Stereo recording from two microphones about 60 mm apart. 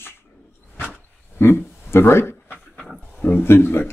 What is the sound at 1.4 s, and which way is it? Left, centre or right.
Speech, left.